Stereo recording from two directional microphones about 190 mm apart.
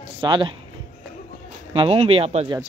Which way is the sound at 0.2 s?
25° right (ahead or behind).